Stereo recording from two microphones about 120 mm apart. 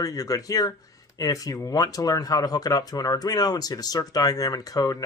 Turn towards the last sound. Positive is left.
turn(degrees=30)  # may be behind; listen again after turning